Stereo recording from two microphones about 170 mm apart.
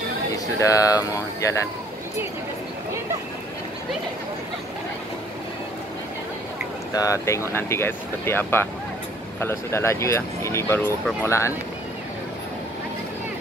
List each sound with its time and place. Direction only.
0.3 s speech: 20° left (ahead or behind)
6.9 s speech: 20° left (ahead or behind)